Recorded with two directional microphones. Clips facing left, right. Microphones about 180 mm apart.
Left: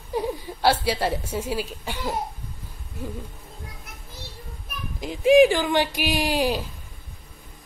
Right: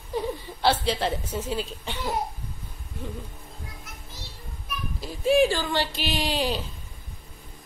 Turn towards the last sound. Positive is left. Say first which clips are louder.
# left 4 dB
turn(degrees=10)  # may be behind; listen again after turning